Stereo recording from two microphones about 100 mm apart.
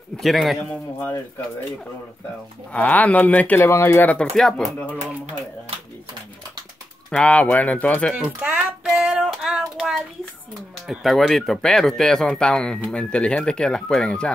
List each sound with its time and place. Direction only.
0.2 s speech: centre (ahead or behind)
2.7 s speech: 15° left (ahead or behind)
4.4 s speech: 5° left (ahead or behind)
7.1 s speech: 10° left (ahead or behind)
8.4 s child singing: 15° right (ahead or behind)
8.8 s child singing: centre (ahead or behind)
10.9 s speech: centre (ahead or behind)